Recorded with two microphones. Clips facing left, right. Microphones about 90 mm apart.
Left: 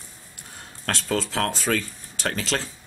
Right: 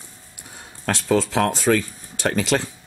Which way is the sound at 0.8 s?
10° right (ahead or behind).